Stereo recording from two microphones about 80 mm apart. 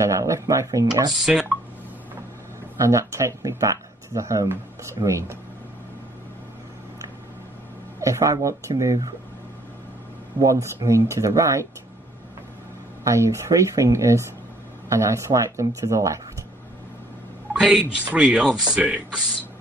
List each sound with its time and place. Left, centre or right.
0.0 s speech: right
1.1 s speech: centre
2.8 s speech: right
8.0 s speech: right
10.4 s speech: right
13.0 s speech: right
17.5 s speech: centre